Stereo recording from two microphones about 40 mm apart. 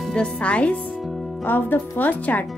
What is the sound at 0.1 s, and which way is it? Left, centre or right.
Speech, left.